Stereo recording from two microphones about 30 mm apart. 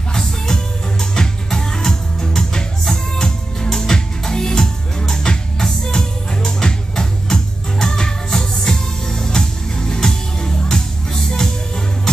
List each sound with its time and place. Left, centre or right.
0.1 s music: centre